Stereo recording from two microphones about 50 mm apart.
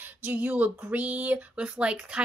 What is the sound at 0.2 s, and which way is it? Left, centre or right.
A woman's voice, right.